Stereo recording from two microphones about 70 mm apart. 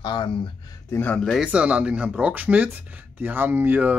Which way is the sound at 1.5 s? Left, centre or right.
Centre.